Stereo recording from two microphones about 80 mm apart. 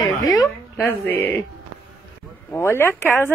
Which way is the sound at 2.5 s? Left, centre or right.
Left.